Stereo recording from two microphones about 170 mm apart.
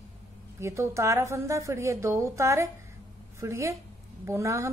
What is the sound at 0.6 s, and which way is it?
A woman's voice, 15° right (ahead or behind).